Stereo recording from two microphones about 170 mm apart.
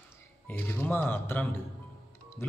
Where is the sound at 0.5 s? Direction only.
10° left (ahead or behind).